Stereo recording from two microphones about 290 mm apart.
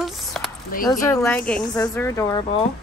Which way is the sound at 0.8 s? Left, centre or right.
Centre.